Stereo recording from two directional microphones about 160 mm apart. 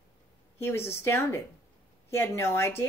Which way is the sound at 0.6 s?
15° left (ahead or behind).